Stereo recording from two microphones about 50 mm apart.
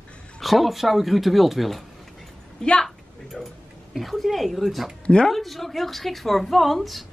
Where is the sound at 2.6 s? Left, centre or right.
Centre.